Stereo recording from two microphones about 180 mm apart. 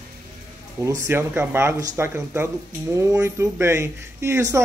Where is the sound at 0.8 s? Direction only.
15° right (ahead or behind).